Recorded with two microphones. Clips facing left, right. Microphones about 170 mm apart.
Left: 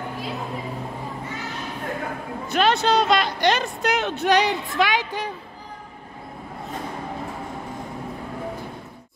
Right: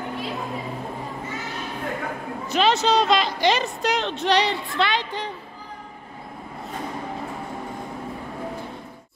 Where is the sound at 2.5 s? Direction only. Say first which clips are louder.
Even; centre (ahead or behind).